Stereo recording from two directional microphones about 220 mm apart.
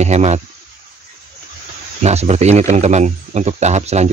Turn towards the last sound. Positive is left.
turn(degrees=-30)  # may be behind; listen again after turning